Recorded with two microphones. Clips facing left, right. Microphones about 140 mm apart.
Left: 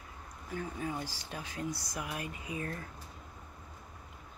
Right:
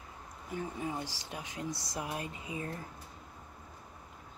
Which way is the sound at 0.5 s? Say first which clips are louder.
Even; 20° right (ahead or behind).